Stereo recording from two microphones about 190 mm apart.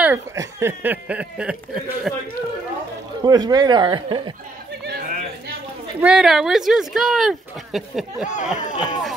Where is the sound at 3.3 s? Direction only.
20° right (ahead or behind).